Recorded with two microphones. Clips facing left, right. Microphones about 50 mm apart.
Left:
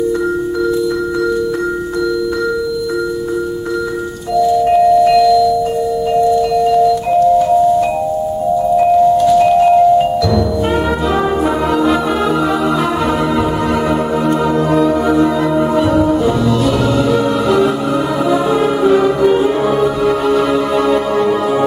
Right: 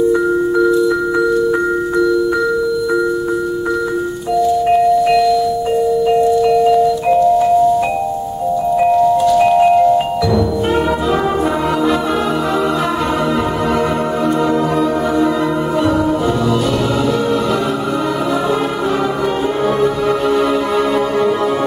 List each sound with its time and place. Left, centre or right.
4.6 s wind chime: centre
6.5 s music: centre
9.4 s tubular bells: centre
19.8 s music: centre